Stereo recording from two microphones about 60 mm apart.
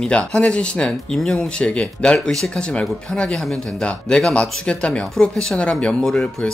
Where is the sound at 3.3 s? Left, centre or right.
Centre.